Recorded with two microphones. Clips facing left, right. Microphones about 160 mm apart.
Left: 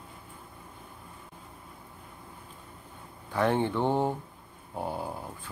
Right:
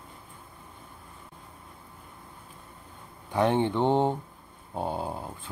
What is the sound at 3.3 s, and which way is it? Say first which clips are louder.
Speech: right 2 dB; 20° right (ahead or behind).